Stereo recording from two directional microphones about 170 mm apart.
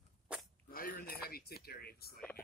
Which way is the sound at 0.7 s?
60° left (ahead or behind).